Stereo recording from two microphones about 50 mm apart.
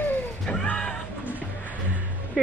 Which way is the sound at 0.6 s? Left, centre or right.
Left.